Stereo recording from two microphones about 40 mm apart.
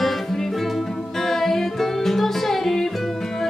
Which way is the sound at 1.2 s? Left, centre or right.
Centre.